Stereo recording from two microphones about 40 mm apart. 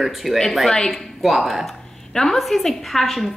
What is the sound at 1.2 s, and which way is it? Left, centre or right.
A woman's voice, centre.